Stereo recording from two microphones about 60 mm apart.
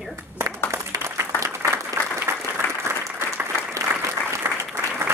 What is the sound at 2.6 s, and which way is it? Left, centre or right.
Applause, left.